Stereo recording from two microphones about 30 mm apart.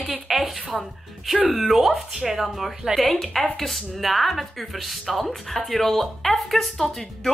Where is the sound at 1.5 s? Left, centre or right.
Centre.